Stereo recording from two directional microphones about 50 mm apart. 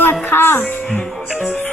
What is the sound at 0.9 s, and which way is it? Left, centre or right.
Speech, left.